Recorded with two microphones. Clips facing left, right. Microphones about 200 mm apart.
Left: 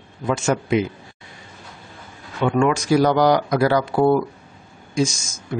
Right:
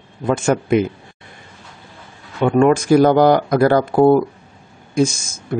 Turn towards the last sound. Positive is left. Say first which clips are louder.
# right 4 dB
turn(degrees=-55)  # may be behind; listen again after turning